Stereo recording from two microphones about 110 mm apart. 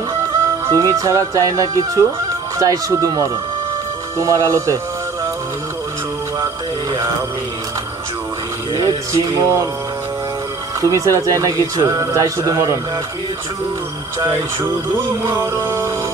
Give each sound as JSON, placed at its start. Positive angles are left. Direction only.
{"t": 0.7, "sound": "speech", "side_deg": -30}
{"t": 8.7, "sound": "speech", "side_deg": -35}
{"t": 10.8, "sound": "speech", "side_deg": -30}
{"t": 15.6, "sound": "speech", "side_deg": -25}